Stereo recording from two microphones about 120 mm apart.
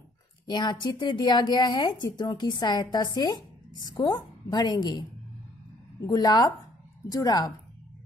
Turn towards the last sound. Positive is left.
turn(degrees=35)  # may be behind; listen again after turning